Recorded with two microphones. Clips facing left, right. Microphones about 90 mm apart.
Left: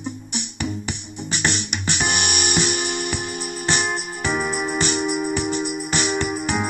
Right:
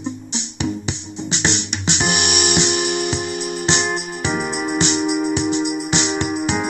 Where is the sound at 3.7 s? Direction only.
20° right (ahead or behind).